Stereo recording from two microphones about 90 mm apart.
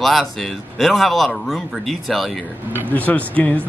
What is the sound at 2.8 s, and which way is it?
Speech, 15° left (ahead or behind).